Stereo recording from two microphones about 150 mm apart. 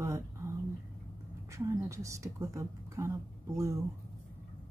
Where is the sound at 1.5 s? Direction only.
20° right (ahead or behind).